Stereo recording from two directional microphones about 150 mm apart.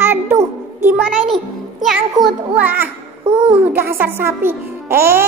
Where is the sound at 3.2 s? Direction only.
35° right (ahead or behind).